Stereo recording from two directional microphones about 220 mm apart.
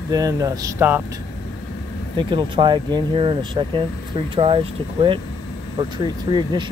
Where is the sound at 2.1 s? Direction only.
20° right (ahead or behind).